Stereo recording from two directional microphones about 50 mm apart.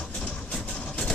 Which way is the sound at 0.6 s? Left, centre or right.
Left.